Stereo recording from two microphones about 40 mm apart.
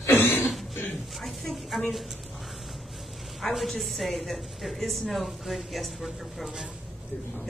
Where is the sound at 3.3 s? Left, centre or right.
Centre.